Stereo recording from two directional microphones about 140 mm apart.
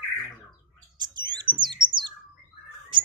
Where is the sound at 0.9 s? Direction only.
30° right (ahead or behind).